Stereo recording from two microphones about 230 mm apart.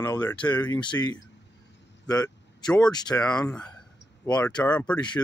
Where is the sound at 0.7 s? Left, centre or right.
Centre.